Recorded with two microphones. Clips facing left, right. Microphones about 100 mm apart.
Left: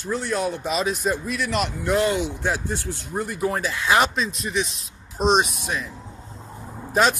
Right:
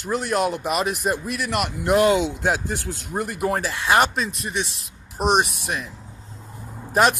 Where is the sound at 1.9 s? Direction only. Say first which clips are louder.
Right 5 dB; 85° right; by 3.5 s 70° right (ahead or behind).